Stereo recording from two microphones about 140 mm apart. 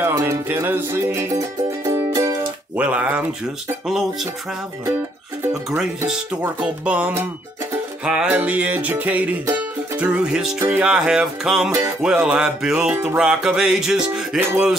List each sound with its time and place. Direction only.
0.0 s music: 15° right (ahead or behind)
2.7 s music: 10° right (ahead or behind)
6.0 s music: 10° right (ahead or behind)